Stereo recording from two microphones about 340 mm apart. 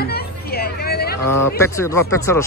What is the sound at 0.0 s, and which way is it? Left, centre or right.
Hubbub, left.